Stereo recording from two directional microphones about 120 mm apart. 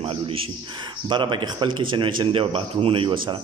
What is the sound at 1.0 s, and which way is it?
A man's voice, 40° right (ahead or behind).